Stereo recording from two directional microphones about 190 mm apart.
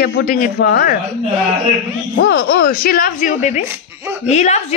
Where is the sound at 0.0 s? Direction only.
55° left (ahead or behind).